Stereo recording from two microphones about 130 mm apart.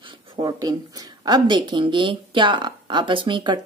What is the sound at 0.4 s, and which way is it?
Speech, 30° right (ahead or behind).